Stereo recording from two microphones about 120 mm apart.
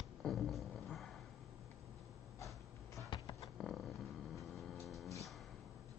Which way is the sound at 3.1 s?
35° left (ahead or behind).